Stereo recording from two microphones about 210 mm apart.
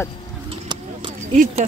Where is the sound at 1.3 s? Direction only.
35° right (ahead or behind).